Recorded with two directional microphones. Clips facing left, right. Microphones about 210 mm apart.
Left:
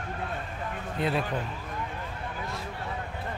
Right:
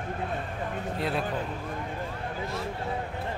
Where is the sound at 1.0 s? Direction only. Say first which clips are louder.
Left 3 dB; centre (ahead or behind).